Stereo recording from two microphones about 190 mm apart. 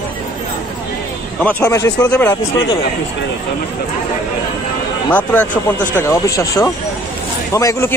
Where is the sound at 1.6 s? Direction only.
15° left (ahead or behind).